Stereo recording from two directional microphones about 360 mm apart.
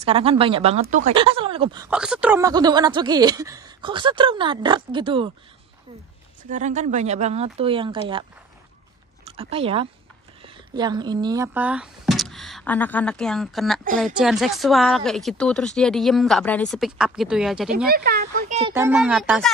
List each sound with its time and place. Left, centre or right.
0.0 s speech: centre
6.5 s speech: centre
9.2 s speech: centre
17.8 s speech: right
18.7 s speech: centre